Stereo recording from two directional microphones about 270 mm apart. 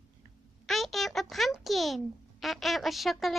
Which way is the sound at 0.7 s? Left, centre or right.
Centre.